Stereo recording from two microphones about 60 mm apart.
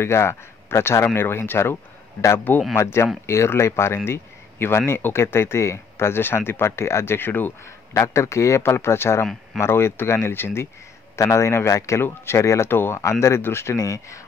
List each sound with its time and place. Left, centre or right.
0.0 s speech: left
7.9 s speech: left
11.1 s speech: left